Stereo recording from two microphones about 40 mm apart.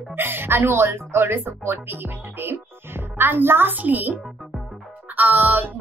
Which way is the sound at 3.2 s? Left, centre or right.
Right.